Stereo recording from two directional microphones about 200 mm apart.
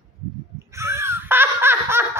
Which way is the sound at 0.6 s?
15° right (ahead or behind).